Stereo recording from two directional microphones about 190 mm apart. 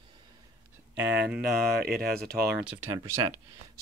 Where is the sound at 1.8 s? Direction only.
55° right (ahead or behind).